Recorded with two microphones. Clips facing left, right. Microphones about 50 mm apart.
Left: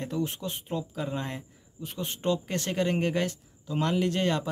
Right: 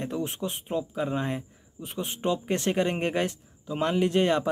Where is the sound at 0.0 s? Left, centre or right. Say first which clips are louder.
Right 1 dB; right.